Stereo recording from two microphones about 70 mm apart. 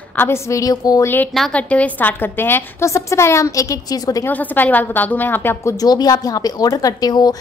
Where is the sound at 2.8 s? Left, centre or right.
Left.